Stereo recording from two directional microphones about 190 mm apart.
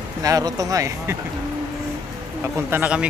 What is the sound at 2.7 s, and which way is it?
Speech, 10° right (ahead or behind).